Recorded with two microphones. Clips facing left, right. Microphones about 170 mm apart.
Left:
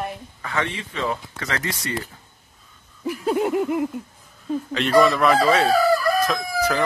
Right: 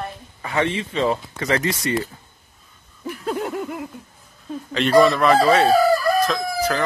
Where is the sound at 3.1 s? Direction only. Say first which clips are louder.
Left 4 dB; 5° left (ahead or behind).